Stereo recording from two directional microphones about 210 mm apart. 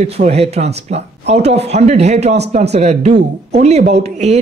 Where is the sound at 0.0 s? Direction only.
30° right (ahead or behind).